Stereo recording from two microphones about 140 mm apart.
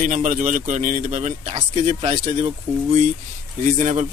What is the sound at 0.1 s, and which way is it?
Speech, 65° right (ahead or behind).